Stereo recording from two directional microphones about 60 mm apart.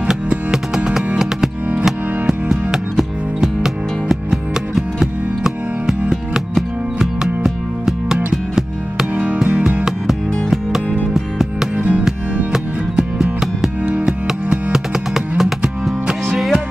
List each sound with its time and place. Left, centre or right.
0.1 s music: centre
9.1 s music: right
9.8 s music: centre
11.7 s music: right
12.5 s music: centre